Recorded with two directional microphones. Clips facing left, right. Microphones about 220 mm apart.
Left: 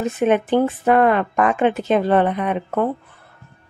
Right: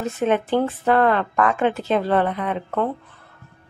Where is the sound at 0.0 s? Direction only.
15° left (ahead or behind).